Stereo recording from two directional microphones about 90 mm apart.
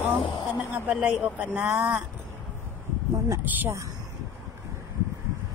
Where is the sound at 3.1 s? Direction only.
35° right (ahead or behind).